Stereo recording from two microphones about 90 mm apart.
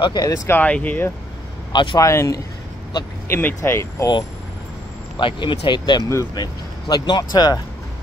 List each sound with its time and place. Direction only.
0.0 s speech: 50° left (ahead or behind)
0.5 s speech: 15° left (ahead or behind)
1.7 s speech: 60° left (ahead or behind)
2.0 s a man's voice: 35° left (ahead or behind)
3.3 s speech: 25° left (ahead or behind)
5.2 s speech: 65° left (ahead or behind); by 7.6 s 50° left (ahead or behind)